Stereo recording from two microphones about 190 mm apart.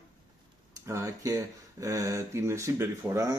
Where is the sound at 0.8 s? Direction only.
15° right (ahead or behind).